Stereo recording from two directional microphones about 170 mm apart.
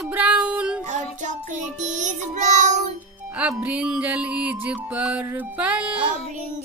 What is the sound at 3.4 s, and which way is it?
Music, 5° right (ahead or behind).